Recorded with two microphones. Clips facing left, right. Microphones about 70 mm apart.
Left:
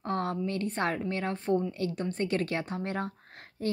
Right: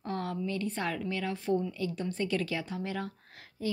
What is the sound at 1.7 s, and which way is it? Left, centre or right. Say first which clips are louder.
Speech: left 2 dB; left.